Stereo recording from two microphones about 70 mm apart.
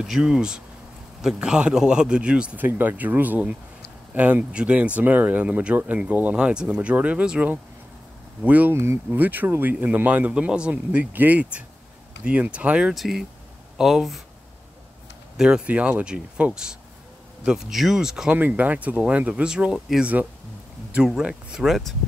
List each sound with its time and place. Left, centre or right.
0.0 s a man's voice: centre
6.3 s a man's voice: centre
8.7 s speech: right
9.1 s a man's voice: right
12.9 s speech: centre
15.3 s a man's voice: centre
18.3 s speech: right; by 20.0 s centre
20.0 s a man's voice: right; by 21.9 s centre